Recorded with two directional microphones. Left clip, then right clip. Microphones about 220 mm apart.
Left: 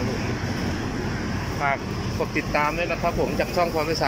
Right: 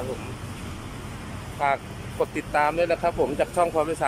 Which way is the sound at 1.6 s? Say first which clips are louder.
Right 1 dB; 15° right (ahead or behind).